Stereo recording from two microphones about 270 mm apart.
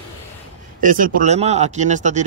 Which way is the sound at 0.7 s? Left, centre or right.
Right.